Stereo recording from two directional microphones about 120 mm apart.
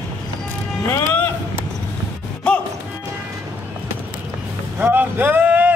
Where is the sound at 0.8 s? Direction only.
20° left (ahead or behind).